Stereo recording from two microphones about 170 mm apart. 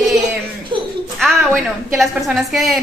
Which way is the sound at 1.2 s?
Centre (ahead or behind).